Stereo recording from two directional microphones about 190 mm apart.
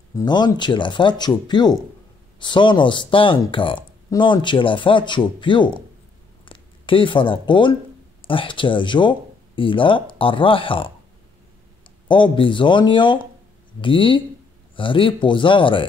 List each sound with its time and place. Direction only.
0.1 s speech: 20° left (ahead or behind)
12.1 s speech: 25° left (ahead or behind)